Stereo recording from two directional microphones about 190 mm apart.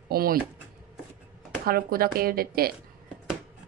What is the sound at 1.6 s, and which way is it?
Speech, 50° right (ahead or behind).